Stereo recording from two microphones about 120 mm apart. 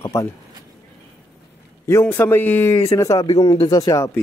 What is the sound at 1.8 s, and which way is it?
A man's voice, 20° left (ahead or behind).